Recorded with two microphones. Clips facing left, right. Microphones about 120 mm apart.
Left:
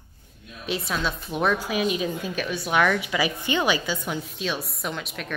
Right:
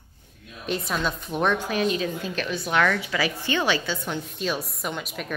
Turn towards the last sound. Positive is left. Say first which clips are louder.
# right 1 dB
turn(degrees=0)  # may be behind; listen again after turning